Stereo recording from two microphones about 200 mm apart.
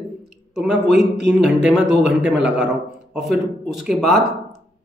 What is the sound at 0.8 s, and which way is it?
Speech, 60° right (ahead or behind).